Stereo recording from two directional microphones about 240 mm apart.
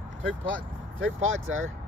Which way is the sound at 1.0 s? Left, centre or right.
Right.